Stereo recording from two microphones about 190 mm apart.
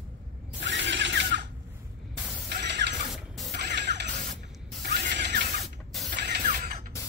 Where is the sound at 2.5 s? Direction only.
60° right (ahead or behind).